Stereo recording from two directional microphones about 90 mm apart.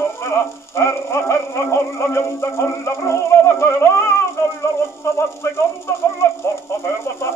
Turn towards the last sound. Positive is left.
turn(degrees=30)  # may be behind; listen again after turning